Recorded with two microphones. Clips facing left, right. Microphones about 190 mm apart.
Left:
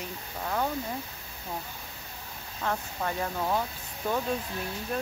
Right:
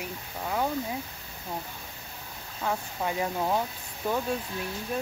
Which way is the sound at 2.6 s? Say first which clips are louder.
Right 1 dB; 10° right (ahead or behind).